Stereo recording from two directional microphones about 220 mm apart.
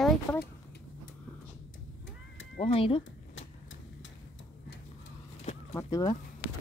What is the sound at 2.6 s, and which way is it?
Speech, 25° left (ahead or behind).